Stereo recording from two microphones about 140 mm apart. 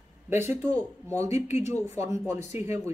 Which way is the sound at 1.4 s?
55° left (ahead or behind).